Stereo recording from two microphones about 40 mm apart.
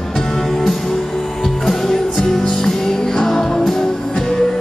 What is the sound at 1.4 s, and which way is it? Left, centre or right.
Music, centre.